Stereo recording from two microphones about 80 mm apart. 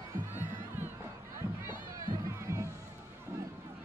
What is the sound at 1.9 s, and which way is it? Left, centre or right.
Music, right.